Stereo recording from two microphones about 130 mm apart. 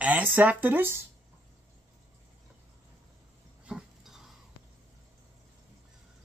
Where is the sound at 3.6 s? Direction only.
5° right (ahead or behind).